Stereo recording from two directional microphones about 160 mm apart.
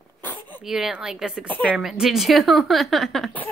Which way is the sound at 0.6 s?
5° right (ahead or behind).